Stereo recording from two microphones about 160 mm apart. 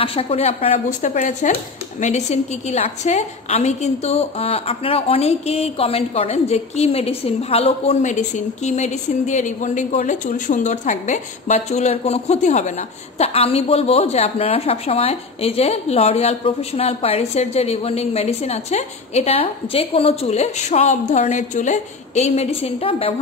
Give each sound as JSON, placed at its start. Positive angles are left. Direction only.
{"t": 0.0, "sound": "speech", "side_deg": 35}